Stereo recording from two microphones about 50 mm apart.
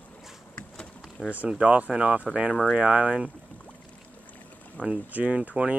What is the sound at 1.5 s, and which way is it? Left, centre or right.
Speech, right.